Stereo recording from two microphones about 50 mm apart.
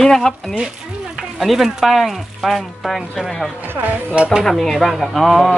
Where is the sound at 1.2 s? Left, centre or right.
Centre.